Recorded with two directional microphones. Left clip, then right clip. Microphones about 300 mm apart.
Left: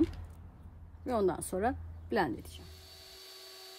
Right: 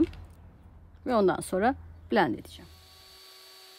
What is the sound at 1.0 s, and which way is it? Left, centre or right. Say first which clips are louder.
A woman's voice: right 6 dB; right.